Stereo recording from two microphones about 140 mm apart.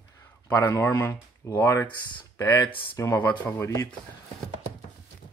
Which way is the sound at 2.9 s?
20° left (ahead or behind).